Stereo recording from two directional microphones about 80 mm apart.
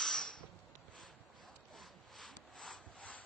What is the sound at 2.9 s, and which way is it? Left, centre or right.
Rub, centre.